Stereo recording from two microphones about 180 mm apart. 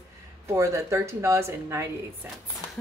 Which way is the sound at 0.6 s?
15° right (ahead or behind).